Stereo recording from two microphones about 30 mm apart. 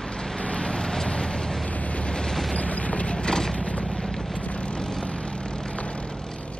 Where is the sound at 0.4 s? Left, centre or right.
Left.